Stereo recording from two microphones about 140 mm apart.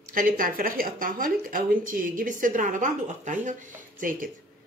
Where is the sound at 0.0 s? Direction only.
80° right.